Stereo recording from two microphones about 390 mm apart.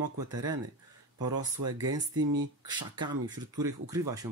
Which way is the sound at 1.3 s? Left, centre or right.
Right.